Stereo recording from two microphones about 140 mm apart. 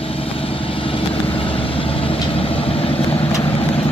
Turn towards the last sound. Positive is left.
turn(degrees=45)  # may be behind; listen again after turning